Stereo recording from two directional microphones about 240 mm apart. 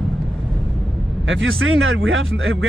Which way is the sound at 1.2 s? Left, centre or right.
Right.